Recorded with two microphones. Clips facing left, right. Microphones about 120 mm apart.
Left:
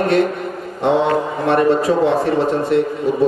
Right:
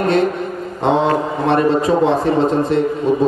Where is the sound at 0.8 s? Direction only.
25° right (ahead or behind).